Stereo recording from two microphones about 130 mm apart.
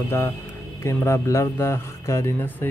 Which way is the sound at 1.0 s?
20° left (ahead or behind).